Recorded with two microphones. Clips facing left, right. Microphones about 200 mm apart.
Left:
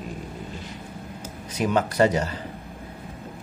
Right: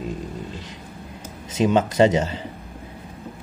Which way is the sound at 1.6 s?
20° right (ahead or behind).